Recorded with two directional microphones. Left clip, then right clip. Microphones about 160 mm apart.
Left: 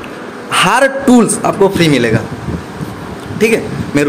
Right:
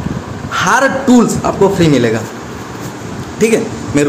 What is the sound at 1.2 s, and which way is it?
Speech, 15° left (ahead or behind).